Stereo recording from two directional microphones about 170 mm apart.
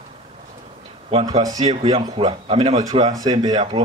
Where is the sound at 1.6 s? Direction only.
35° right (ahead or behind).